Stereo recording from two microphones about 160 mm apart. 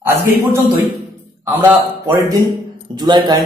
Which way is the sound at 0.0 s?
15° right (ahead or behind).